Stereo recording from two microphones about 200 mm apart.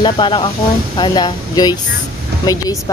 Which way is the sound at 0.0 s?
25° left (ahead or behind).